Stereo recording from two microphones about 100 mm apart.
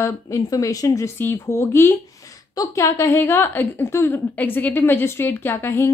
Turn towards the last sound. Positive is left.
turn(degrees=25)  # may be behind; listen again after turning